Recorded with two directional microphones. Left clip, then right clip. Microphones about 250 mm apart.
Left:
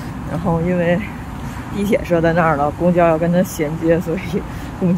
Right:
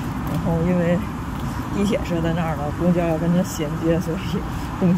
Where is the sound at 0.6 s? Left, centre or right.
Centre.